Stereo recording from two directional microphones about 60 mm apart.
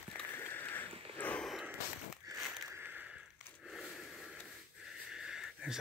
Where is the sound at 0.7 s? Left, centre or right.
Left.